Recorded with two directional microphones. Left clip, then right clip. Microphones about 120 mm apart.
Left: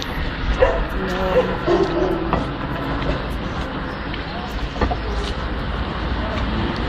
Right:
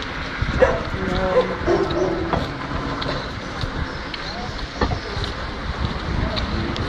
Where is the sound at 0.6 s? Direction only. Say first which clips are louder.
Even; 30° right (ahead or behind).